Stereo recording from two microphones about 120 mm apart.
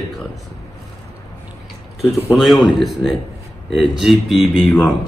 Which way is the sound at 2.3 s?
Centre (ahead or behind).